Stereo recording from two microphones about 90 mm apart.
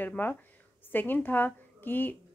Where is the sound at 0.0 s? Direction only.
20° left (ahead or behind).